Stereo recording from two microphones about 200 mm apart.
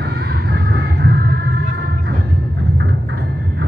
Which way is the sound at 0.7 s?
55° right (ahead or behind).